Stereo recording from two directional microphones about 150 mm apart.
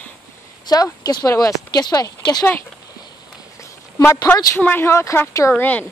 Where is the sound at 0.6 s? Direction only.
25° left (ahead or behind).